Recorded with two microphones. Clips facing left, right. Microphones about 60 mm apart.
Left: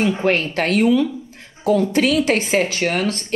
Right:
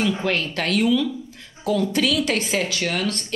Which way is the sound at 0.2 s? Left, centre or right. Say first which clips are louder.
Left 5 dB; left.